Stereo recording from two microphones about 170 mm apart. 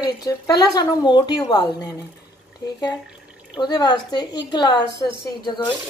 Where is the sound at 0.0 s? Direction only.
20° left (ahead or behind).